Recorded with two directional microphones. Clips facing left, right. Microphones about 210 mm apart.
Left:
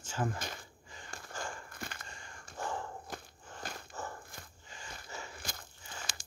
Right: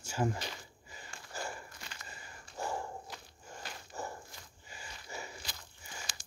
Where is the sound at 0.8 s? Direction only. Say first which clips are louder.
Even; 10° right (ahead or behind).